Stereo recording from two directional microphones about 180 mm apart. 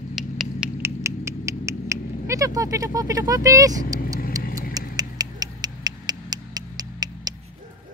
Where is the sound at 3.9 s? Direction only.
50° left (ahead or behind).